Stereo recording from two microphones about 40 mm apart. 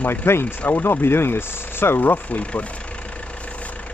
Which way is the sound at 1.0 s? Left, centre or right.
Left.